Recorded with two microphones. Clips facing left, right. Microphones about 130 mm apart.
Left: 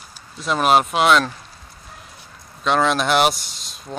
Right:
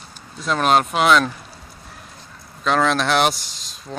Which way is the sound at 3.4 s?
40° right (ahead or behind).